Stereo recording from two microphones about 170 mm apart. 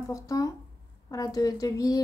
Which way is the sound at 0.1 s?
20° left (ahead or behind).